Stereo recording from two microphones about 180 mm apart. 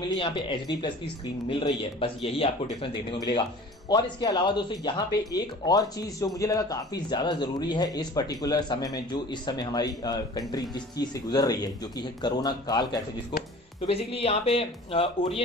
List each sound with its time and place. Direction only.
0.2 s speech: 25° left (ahead or behind)
13.7 s speech: 30° left (ahead or behind)